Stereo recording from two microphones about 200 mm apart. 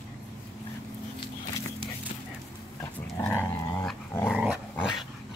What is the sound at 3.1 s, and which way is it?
Dog, 10° left (ahead or behind).